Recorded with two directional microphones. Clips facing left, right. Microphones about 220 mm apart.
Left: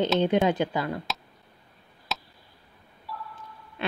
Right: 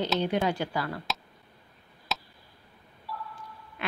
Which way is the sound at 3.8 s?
30° left (ahead or behind).